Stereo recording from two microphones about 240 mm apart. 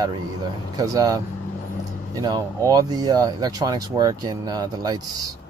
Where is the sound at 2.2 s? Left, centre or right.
Centre.